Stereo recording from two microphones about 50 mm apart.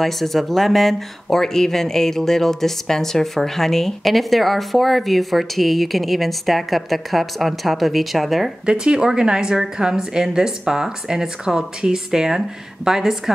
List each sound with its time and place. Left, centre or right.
0.0 s speech: centre
8.6 s a woman's voice: centre